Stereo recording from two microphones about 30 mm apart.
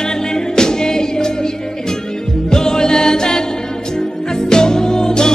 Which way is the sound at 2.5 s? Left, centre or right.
Left.